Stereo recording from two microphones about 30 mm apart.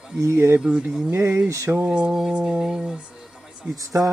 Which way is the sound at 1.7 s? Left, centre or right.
Right.